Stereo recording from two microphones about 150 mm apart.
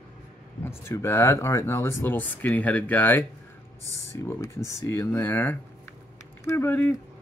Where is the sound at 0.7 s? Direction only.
15° left (ahead or behind).